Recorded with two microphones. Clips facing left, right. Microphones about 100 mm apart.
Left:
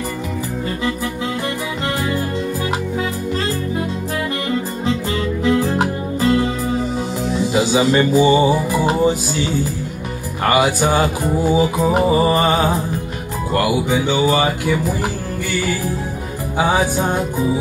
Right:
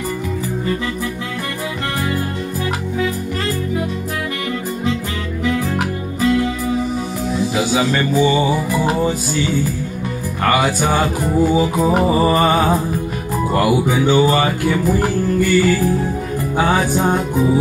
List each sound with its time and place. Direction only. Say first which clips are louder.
5.4 s music: left 2 dB; 30° left (ahead or behind)
7.5 s speech: left 4 dB; 20° left (ahead or behind)
10.5 s music: left 2 dB; 10° left (ahead or behind)
12.1 s speech: right 1 dB; 5° left (ahead or behind)
14.2 s music: right 1 dB; 10° left (ahead or behind)
16.5 s music: even; 10° left (ahead or behind)